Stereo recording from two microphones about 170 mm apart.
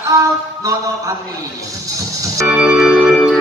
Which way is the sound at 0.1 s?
20° right (ahead or behind).